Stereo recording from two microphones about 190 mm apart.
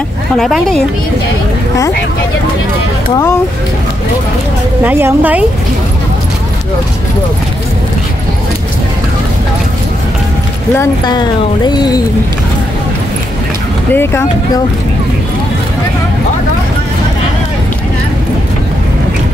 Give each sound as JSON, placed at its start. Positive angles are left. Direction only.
{"t": 0.4, "sound": "speech", "side_deg": 0}
{"t": 4.8, "sound": "a woman's voice", "side_deg": -10}
{"t": 10.8, "sound": "speech", "side_deg": 20}
{"t": 13.9, "sound": "speech", "side_deg": 10}